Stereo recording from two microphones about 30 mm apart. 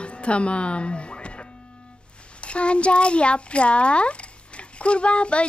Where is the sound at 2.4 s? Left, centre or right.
Left.